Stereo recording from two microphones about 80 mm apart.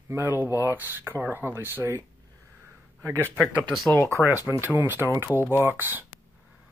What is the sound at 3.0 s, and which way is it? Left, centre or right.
Speech, right.